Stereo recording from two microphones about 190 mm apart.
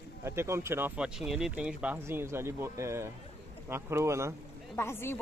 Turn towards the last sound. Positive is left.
turn(degrees=10)  # may be behind; listen again after turning